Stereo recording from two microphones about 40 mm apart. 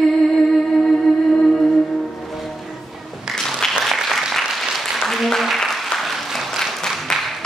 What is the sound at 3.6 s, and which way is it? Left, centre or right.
Applause, centre.